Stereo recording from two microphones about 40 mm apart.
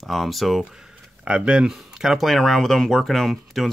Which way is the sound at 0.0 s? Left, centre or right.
Centre.